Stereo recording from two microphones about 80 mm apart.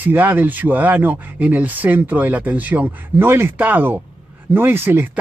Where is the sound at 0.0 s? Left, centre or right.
Right.